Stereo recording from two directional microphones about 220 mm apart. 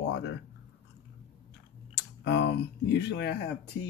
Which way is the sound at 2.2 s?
50° left (ahead or behind).